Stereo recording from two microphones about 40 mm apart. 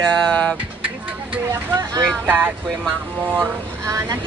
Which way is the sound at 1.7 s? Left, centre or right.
Right.